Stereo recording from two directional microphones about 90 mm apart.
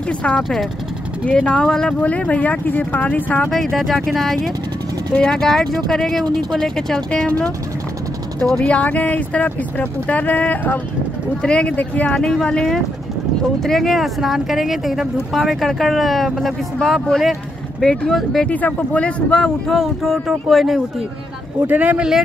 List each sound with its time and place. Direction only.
0.4 s speech: centre (ahead or behind)
1.2 s speech: 15° left (ahead or behind)
3.5 s speech: 5° left (ahead or behind)
8.5 s speech: 15° left (ahead or behind)
12.2 s speech: 5° left (ahead or behind)
18.5 s speech: 15° left (ahead or behind)
19.7 s speech: centre (ahead or behind)
21.6 s speech: 15° right (ahead or behind)